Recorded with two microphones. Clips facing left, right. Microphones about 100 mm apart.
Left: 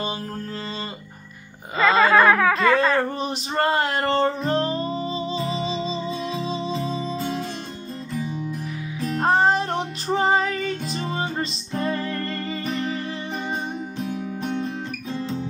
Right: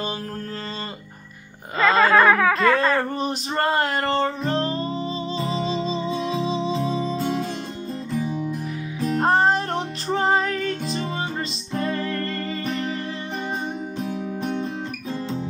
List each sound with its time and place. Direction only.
1.8 s speech: centre (ahead or behind)
4.6 s music: 30° right (ahead or behind)
5.7 s music: centre (ahead or behind)
6.9 s music: 80° right
7.2 s music: centre (ahead or behind)
9.0 s music: centre (ahead or behind)
11.0 s music: 30° left (ahead or behind)
13.9 s music: centre (ahead or behind)